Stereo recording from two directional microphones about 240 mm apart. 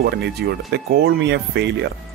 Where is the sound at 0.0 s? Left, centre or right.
Right.